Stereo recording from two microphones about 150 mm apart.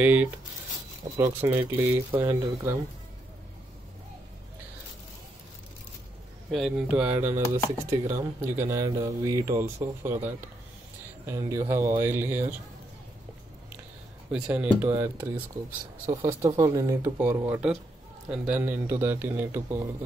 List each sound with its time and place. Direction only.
0.0 s a man's voice: 10° right (ahead or behind)
1.1 s speech: 25° right (ahead or behind)
1.5 s a man's voice: 15° right (ahead or behind)
6.5 s a man's voice: 5° right (ahead or behind)
14.3 s a man's voice: 10° right (ahead or behind)